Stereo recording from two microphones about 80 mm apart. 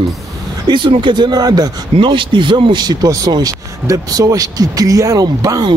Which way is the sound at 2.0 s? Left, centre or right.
Right.